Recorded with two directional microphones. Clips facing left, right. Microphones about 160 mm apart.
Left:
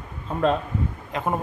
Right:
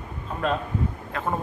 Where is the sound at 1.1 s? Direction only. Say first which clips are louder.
Left 3 dB; 15° left (ahead or behind).